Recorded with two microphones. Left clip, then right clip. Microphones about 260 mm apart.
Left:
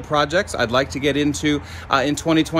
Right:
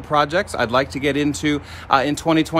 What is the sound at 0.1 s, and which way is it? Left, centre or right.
Speech, centre.